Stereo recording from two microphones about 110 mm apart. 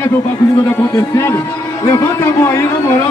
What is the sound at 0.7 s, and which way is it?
Speech, 25° left (ahead or behind).